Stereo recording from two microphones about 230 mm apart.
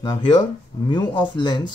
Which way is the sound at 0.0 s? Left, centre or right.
Left.